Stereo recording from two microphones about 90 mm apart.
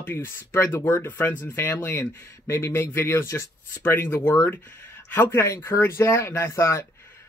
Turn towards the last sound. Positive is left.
turn(degrees=30)  # may be behind; listen again after turning